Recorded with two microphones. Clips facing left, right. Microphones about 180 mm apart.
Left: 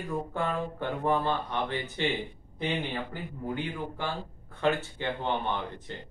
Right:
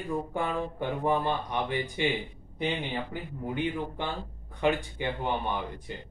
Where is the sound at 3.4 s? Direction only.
20° right (ahead or behind).